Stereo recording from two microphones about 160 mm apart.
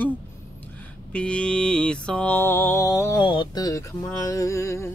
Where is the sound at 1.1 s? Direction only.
5° left (ahead or behind).